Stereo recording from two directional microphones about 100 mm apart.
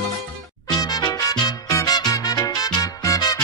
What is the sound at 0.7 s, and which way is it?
Music, 40° left (ahead or behind).